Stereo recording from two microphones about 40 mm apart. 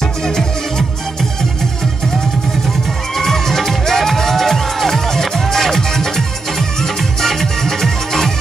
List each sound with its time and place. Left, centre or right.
3.2 s music: centre